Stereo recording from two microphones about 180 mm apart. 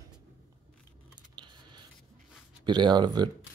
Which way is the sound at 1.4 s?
25° right (ahead or behind).